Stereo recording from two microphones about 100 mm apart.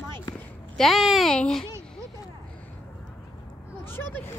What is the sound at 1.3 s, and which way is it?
Speech, 10° left (ahead or behind).